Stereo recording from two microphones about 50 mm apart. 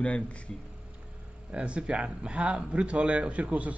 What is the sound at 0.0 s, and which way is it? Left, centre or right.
Speech, left.